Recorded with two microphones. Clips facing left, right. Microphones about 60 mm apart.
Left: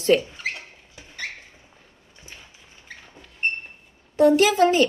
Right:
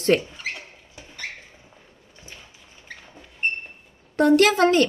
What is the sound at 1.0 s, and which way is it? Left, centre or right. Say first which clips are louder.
Rodents: left 2 dB; right.